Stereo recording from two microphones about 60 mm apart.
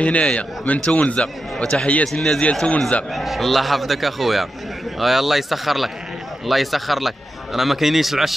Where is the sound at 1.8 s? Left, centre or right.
Left.